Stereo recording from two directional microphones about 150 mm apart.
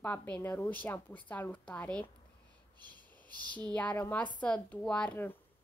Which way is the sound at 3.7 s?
10° left (ahead or behind).